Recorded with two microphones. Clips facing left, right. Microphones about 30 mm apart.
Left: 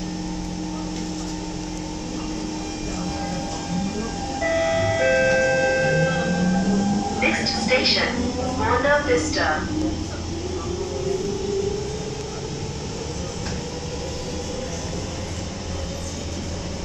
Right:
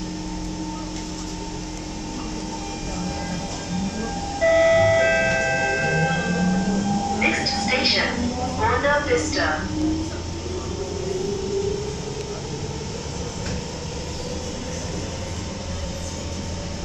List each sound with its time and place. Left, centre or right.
4.0 s train: centre
4.6 s music: centre
6.8 s train: centre
8.0 s a sound: centre